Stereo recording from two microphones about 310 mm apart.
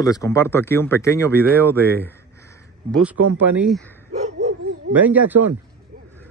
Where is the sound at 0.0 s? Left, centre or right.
Centre.